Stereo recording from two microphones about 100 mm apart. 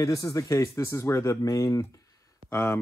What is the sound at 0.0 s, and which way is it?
Speech, 35° left (ahead or behind).